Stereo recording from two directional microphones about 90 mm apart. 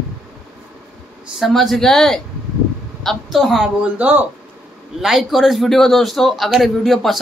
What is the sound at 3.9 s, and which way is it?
Speech, 20° right (ahead or behind).